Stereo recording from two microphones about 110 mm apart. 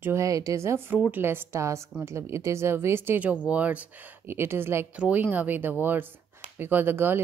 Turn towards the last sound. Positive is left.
turn(degrees=-20)  # may be behind; listen again after turning